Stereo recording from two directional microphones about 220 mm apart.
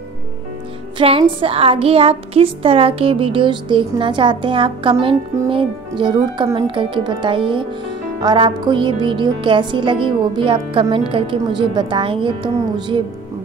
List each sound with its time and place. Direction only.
0.9 s a woman's voice: 25° right (ahead or behind)